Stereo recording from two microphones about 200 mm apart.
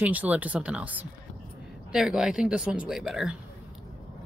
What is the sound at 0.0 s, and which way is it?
A woman's voice, 10° right (ahead or behind).